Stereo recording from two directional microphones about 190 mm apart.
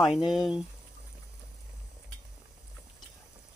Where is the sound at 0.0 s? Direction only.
Centre (ahead or behind).